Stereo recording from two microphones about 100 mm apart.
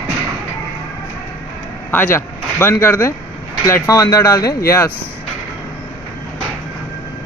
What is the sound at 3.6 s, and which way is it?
Speech, 35° left (ahead or behind).